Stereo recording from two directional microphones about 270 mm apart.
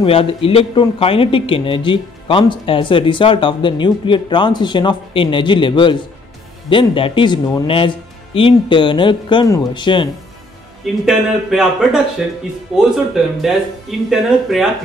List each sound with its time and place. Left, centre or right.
0.0 s a man's voice: centre
11.1 s speech: centre